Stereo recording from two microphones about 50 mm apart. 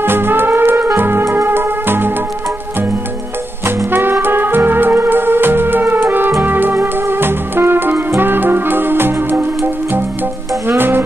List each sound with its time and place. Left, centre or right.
0.0 s music: right
0.9 s keyboard: right
1.4 s music: right
3.6 s music: right